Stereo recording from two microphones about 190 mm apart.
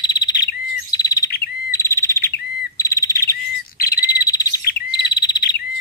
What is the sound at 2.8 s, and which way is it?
Bird vocalization, 15° left (ahead or behind).